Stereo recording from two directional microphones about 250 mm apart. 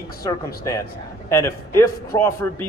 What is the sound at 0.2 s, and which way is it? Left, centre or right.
A man's voice, centre.